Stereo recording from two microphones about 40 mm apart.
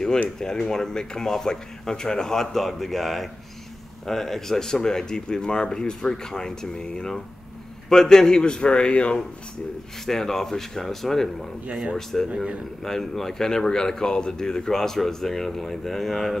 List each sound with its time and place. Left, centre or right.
0.4 s speech: centre
7.9 s a man's voice: centre
10.0 s speech: centre
11.7 s speech: centre
12.8 s speech: centre